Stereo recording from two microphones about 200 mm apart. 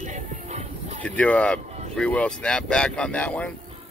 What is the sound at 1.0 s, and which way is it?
Speech, 5° left (ahead or behind).